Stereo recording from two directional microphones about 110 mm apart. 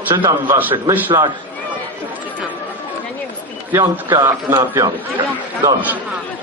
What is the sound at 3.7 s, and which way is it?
A man's voice, 20° right (ahead or behind).